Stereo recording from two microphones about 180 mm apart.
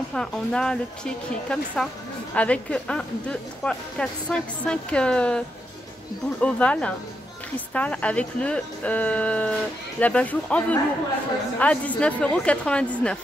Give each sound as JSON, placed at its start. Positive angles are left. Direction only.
{"t": 0.1, "sound": "a woman's voice", "side_deg": 5}
{"t": 6.4, "sound": "a woman's voice", "side_deg": 5}